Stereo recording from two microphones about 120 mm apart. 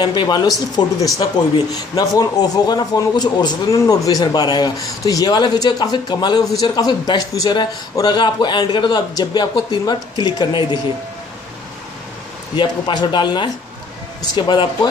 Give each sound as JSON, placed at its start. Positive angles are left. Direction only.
{"t": 0.0, "sound": "a man's voice", "side_deg": 40}
{"t": 12.5, "sound": "a man's voice", "side_deg": 40}